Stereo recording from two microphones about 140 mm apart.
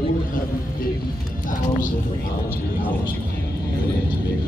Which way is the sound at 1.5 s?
70° left (ahead or behind).